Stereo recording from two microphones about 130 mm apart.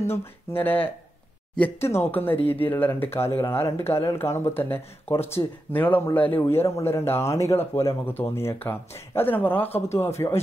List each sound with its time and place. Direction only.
0.0 s speech: 20° left (ahead or behind)
9.7 s a man's voice: 55° left (ahead or behind)
9.9 s speech: 20° left (ahead or behind)